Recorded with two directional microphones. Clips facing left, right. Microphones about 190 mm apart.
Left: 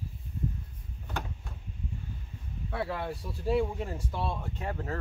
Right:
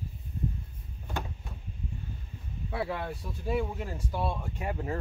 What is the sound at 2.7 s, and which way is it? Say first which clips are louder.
Speech: even; 5° right (ahead or behind).